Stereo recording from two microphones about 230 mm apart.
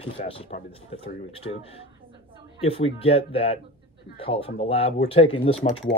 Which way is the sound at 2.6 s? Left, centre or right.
Left.